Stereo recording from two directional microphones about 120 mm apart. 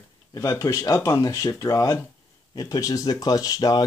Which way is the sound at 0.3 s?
30° left (ahead or behind).